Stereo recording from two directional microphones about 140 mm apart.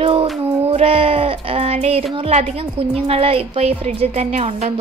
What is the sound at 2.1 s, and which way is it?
A woman's voice, 45° right (ahead or behind).